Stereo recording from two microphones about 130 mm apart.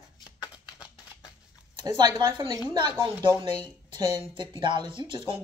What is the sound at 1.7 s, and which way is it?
Speech, 30° right (ahead or behind).